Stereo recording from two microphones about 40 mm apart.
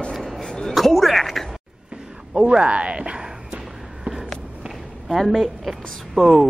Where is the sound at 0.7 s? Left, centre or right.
Centre.